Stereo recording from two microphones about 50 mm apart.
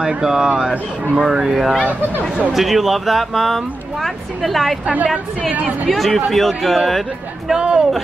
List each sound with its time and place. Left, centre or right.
0.0 s speech: centre
5.5 s speech: right
5.9 s speech: centre
7.5 s speech: centre